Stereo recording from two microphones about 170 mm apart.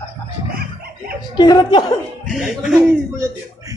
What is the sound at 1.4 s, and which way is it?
Speech, 25° left (ahead or behind).